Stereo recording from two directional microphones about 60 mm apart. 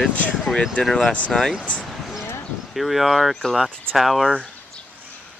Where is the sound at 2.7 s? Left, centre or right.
Centre.